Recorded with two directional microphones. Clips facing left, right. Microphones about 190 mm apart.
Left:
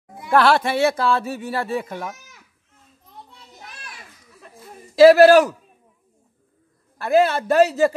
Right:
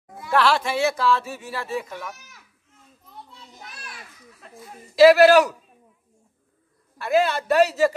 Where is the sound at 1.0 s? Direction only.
35° left (ahead or behind).